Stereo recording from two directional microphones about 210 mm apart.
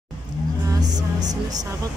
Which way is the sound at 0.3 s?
20° right (ahead or behind).